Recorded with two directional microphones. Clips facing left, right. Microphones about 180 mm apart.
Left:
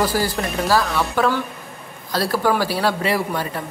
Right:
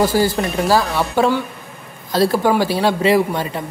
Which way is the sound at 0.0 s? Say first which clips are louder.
Right 5 dB; 25° right (ahead or behind).